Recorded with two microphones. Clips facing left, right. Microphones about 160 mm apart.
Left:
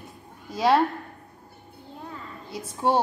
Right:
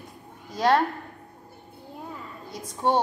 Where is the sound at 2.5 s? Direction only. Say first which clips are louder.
Left 1 dB; 10° left (ahead or behind).